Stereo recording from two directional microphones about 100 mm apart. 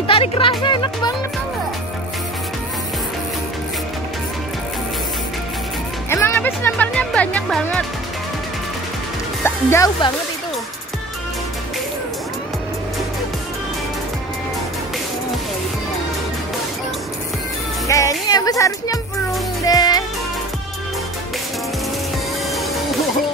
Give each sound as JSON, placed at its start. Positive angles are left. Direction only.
{"t": 0.0, "sound": "speech", "side_deg": 65}
{"t": 6.0, "sound": "speech", "side_deg": 25}
{"t": 9.4, "sound": "music", "side_deg": 25}
{"t": 17.8, "sound": "speech", "side_deg": 35}
{"t": 19.6, "sound": "music", "side_deg": 40}